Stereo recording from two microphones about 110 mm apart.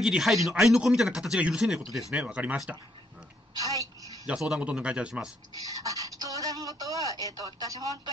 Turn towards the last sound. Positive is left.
turn(degrees=-35)  # may be behind; listen again after turning